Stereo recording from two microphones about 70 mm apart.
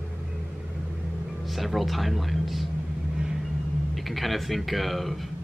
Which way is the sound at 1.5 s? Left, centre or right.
Centre.